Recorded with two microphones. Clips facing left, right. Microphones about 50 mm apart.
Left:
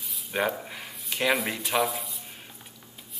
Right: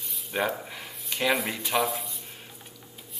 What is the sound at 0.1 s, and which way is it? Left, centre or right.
Speech, centre.